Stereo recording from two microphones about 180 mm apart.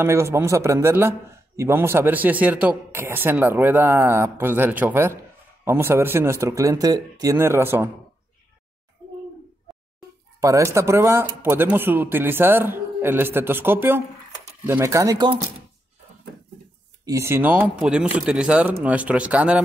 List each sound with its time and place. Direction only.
0.0 s speech: 15° right (ahead or behind)
9.7 s a sound: centre (ahead or behind)
10.4 s speech: 15° right (ahead or behind)
17.0 s speech: 15° right (ahead or behind)